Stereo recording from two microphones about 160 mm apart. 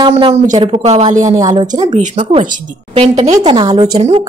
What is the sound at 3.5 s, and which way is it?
Speech, 25° right (ahead or behind).